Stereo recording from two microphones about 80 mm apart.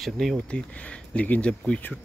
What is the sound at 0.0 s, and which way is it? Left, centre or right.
Speech, centre.